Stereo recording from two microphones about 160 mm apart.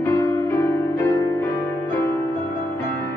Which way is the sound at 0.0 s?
15° left (ahead or behind).